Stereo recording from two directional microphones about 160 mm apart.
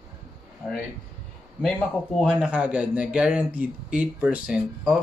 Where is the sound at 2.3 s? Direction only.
10° right (ahead or behind).